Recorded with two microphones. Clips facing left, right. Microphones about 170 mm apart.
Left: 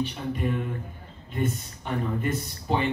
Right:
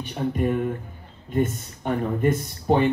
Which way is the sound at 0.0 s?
50° right (ahead or behind).